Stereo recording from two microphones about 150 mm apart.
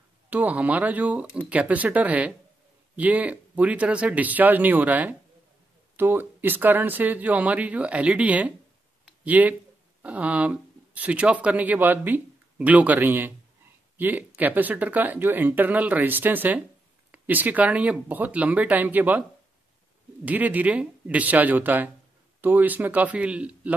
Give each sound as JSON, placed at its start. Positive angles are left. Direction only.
{"t": 0.3, "sound": "speech", "side_deg": -10}
{"t": 20.2, "sound": "speech", "side_deg": -10}